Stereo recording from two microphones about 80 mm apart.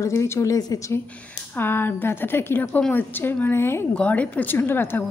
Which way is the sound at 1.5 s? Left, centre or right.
Left.